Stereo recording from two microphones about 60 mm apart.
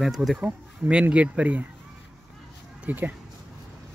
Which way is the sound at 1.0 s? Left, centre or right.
Right.